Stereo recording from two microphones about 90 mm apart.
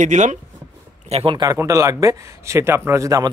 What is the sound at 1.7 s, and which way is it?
Speech, 35° right (ahead or behind).